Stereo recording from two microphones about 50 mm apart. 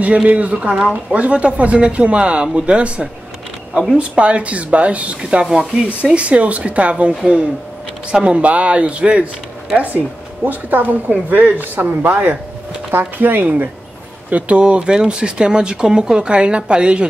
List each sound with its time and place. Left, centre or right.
0.0 s speech: right
5.4 s speech: centre
6.1 s speech: right
10.4 s a woman's voice: right
14.3 s speech: right